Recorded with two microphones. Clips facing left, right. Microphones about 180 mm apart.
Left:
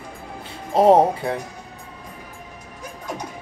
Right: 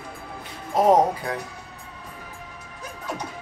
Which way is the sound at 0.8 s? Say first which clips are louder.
Left 4 dB; 30° left (ahead or behind).